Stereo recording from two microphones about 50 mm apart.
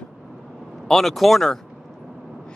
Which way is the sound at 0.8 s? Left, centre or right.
Centre.